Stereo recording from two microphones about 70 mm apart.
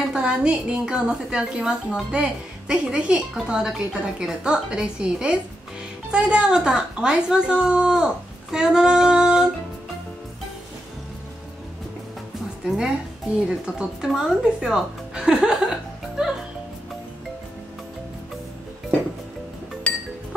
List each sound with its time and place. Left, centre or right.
0.1 s speech: centre
8.5 s female singing: centre
12.6 s speech: centre
19.9 s music: centre